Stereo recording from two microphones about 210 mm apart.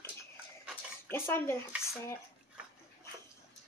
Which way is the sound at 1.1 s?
10° left (ahead or behind).